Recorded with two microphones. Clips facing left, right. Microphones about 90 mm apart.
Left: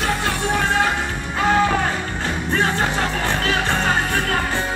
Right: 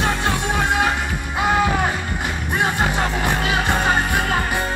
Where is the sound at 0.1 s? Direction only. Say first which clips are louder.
Even; 20° right (ahead or behind).